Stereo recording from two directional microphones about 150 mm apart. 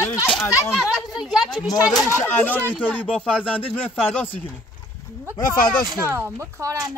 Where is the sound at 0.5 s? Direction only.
20° left (ahead or behind).